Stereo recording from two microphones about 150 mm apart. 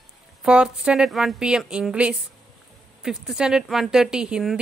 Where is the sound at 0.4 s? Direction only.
5° right (ahead or behind).